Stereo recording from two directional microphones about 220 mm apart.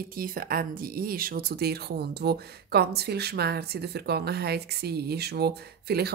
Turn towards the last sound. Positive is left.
turn(degrees=-45)  # may be behind; listen again after turning